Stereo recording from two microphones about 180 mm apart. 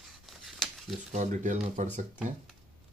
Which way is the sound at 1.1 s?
45° right (ahead or behind).